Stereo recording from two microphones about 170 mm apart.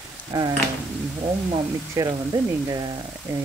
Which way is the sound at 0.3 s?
20° right (ahead or behind).